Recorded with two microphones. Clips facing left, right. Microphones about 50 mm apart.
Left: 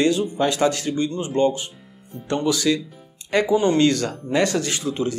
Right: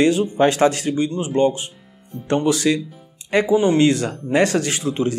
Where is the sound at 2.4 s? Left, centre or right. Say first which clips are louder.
Right 1 dB; right.